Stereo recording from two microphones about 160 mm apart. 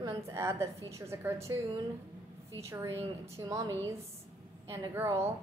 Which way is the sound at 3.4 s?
20° right (ahead or behind).